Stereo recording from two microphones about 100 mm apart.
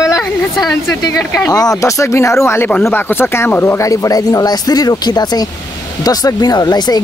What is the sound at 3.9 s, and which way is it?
Speech, 35° left (ahead or behind).